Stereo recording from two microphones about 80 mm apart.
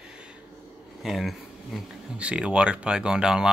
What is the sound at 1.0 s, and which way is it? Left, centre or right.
Speech, centre.